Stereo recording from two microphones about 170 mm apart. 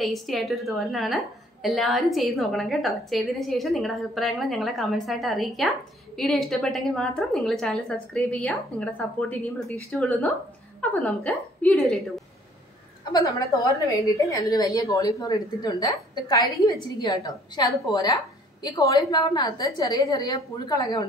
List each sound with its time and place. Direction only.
0.0 s a woman's voice: centre (ahead or behind)
13.2 s a woman's voice: 20° left (ahead or behind)